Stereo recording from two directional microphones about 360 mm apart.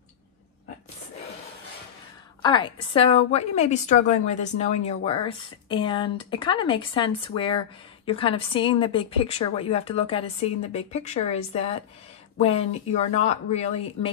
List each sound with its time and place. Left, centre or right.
2.4 s speech: centre